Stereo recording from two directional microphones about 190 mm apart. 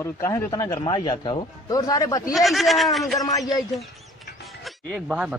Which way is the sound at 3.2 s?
20° left (ahead or behind).